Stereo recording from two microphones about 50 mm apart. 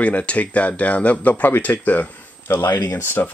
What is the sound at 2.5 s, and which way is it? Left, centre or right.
Speech, left.